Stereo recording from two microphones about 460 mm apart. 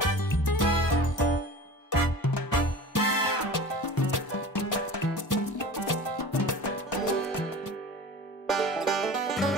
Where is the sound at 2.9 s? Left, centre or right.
Left.